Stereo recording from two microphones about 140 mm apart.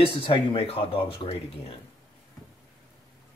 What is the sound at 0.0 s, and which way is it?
Speech, 40° left (ahead or behind).